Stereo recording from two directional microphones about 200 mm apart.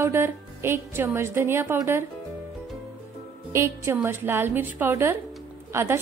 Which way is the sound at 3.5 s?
15° right (ahead or behind).